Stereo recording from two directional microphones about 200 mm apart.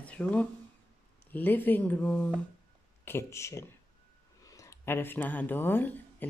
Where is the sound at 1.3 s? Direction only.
10° left (ahead or behind).